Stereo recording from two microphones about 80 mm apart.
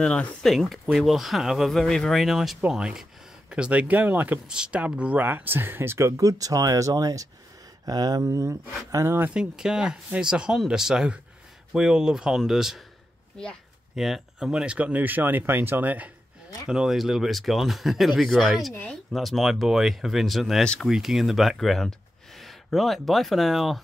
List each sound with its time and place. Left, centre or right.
0.0 s speech: centre
0.5 s speech: centre; by 9.2 s right
9.3 s speech: centre
13.9 s speech: centre; by 16.1 s right
16.6 s speech: centre